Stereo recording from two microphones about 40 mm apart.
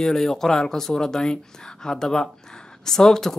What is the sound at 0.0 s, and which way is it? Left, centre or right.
Speech, centre.